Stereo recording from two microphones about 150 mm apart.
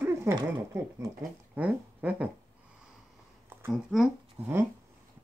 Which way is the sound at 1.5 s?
10° right (ahead or behind).